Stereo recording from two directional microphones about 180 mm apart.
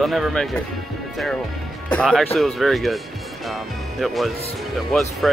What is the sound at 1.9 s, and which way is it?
Speech, 5° left (ahead or behind).